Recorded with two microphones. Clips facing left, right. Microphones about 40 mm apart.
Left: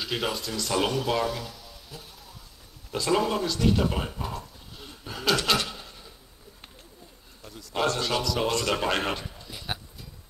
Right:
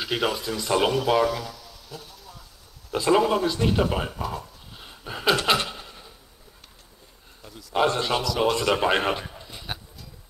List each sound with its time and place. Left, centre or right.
0.0 s speech: centre
1.2 s speech: centre
2.9 s speech: centre
4.3 s a sound: centre
7.4 s a man's voice: centre
7.8 s a man's voice: right
8.2 s speech: centre
9.7 s a sound: centre